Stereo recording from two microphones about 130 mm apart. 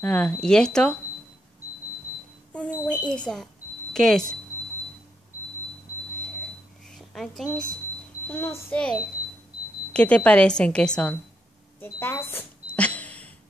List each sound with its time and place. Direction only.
0.0 s speech: 5° left (ahead or behind)
2.5 s a sound: 10° left (ahead or behind)
3.9 s speech: 5° left (ahead or behind)
6.9 s speech: centre (ahead or behind)
8.3 s a woman's voice: 15° left (ahead or behind)
9.9 s a woman's voice: 10° left (ahead or behind)
11.8 s a sound: 15° left (ahead or behind)